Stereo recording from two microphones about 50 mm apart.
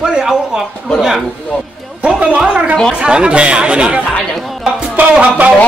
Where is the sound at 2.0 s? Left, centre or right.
Right.